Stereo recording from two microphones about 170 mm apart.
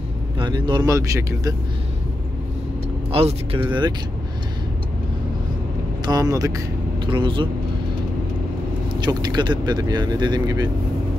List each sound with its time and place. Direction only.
0.4 s speech: 25° right (ahead or behind)
3.1 s speech: 35° right (ahead or behind)
6.0 s speech: 20° right (ahead or behind)
9.0 s speech: 25° right (ahead or behind)